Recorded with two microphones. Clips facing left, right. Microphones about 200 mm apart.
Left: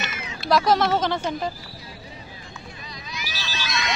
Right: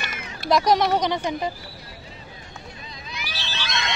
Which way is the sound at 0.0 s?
50° right (ahead or behind).